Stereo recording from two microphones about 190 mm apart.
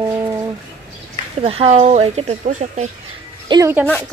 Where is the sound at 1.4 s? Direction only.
30° right (ahead or behind).